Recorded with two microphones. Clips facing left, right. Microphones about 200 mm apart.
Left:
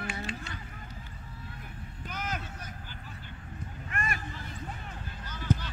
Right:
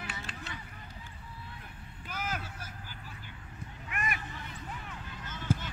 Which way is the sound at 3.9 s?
15° right (ahead or behind).